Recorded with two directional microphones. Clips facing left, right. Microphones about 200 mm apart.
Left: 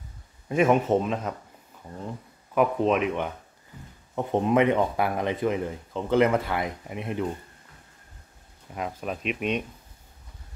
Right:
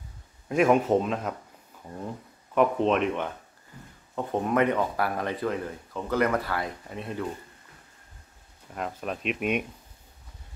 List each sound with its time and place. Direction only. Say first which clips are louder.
0.5 s speech: even; centre (ahead or behind)
4.1 s speech: left 4 dB; 20° left (ahead or behind)
8.7 s speech: left 1 dB; 5° left (ahead or behind)